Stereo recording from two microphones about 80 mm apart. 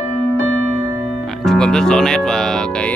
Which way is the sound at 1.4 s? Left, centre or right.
Centre.